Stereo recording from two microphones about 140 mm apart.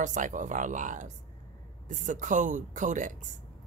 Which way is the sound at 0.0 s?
65° right (ahead or behind).